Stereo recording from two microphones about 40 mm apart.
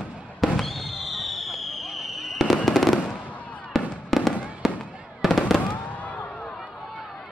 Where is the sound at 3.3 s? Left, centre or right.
Left.